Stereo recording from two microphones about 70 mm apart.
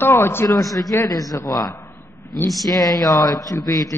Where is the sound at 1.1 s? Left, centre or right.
Left.